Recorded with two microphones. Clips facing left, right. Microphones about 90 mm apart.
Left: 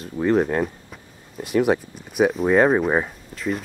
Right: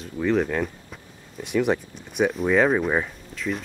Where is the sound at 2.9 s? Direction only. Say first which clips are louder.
Left 3 dB; 20° left (ahead or behind).